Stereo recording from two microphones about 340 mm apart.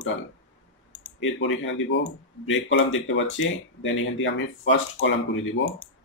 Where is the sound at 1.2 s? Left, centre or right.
Left.